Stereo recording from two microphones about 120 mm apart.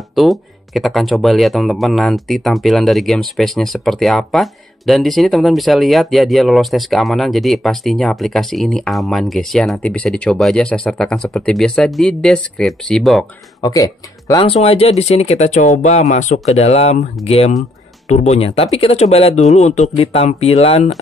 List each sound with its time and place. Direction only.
0.1 s speech: centre (ahead or behind)
13.6 s speech: 30° left (ahead or behind)
14.4 s speech: 55° left (ahead or behind)